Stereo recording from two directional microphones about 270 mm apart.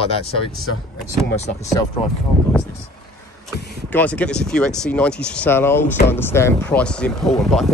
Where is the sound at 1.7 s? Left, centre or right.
Centre.